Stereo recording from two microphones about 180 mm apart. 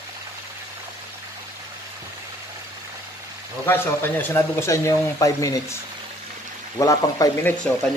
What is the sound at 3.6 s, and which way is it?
Speech, 10° left (ahead or behind).